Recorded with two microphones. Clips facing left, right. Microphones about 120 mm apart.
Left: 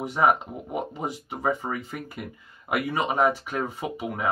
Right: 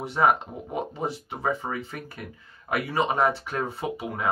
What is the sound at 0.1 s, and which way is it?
Speech, 10° left (ahead or behind).